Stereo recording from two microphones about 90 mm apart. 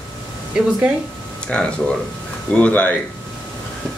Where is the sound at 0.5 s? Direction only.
10° right (ahead or behind).